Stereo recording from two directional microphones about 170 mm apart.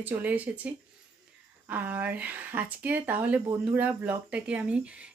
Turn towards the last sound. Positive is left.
turn(degrees=-5)  # may be behind; listen again after turning